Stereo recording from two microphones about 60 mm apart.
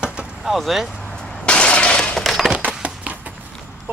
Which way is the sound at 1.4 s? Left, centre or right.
Centre.